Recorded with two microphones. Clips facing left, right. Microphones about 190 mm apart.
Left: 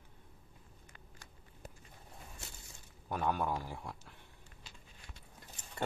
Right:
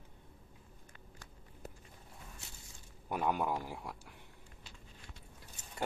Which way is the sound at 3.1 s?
15° right (ahead or behind).